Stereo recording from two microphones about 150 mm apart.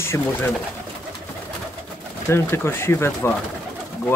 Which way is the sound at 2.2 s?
15° left (ahead or behind).